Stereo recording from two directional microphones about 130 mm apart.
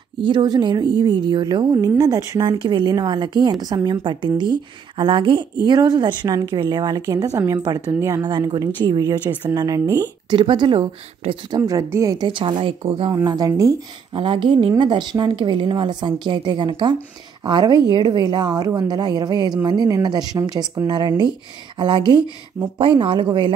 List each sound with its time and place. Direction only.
0.2 s a woman's voice: 35° right (ahead or behind)
9.3 s a woman's voice: 15° right (ahead or behind)
10.3 s a woman's voice: 40° right (ahead or behind)
13.1 s a woman's voice: 30° right (ahead or behind)
14.1 s a woman's voice: 40° right (ahead or behind)